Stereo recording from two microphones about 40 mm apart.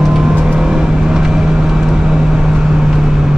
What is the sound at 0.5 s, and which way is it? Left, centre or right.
Vehicle, centre.